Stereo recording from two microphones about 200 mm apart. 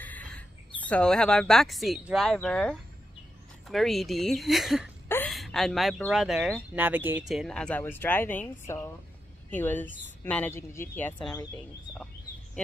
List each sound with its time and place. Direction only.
0.0 s bird: 5° left (ahead or behind)
0.8 s speech: 5° left (ahead or behind)
5.0 s a sound: 10° left (ahead or behind)
5.3 s a woman's voice: centre (ahead or behind)